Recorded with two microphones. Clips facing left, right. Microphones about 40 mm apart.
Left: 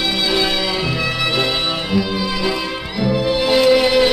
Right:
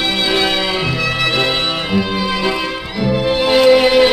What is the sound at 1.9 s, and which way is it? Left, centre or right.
Music, right.